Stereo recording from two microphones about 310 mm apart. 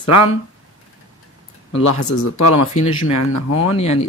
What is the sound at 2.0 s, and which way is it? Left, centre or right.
Speech, left.